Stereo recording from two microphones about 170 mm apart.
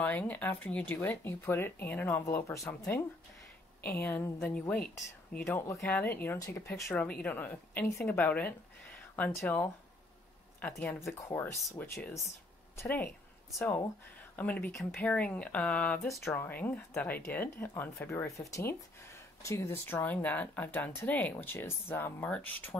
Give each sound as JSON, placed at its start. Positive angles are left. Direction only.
{"t": 0.0, "sound": "speech", "side_deg": 10}
{"t": 3.8, "sound": "speech", "side_deg": 10}